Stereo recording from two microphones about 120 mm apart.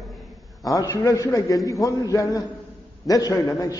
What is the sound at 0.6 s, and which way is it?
A man's voice, 30° left (ahead or behind).